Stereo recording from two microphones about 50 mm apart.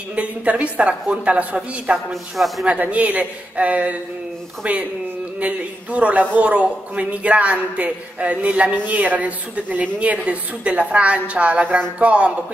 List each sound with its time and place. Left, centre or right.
0.1 s a man's voice: right
2.3 s speech: centre
2.8 s a man's voice: right